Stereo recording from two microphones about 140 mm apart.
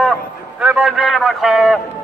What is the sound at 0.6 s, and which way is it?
A man's voice, 5° right (ahead or behind).